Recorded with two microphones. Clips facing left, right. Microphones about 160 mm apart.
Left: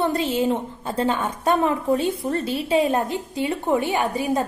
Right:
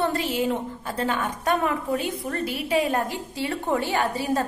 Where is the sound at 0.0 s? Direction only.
20° left (ahead or behind).